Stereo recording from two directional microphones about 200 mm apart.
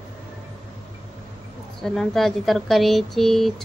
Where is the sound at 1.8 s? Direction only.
Centre (ahead or behind).